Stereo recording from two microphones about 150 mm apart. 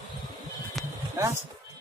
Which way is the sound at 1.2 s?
20° right (ahead or behind).